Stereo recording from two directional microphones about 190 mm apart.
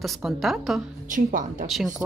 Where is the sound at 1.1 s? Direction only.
45° right (ahead or behind).